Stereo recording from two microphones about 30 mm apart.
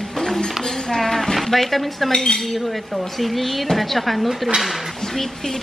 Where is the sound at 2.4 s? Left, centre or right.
Centre.